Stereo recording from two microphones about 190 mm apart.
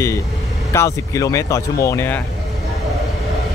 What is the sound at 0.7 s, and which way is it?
Speech, 15° left (ahead or behind).